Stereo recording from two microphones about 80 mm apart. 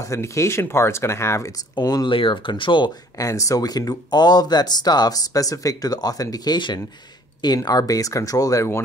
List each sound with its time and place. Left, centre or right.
0.0 s speech: left
1.8 s speech: left
3.2 s speech: left